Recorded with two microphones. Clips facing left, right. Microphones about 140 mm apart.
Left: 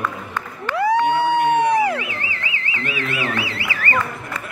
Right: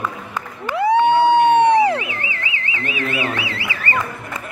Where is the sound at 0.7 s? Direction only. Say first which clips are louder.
Right 3 dB; 25° right (ahead or behind).